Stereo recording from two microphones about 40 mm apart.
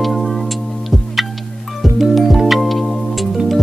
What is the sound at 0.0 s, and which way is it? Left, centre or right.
Music, centre.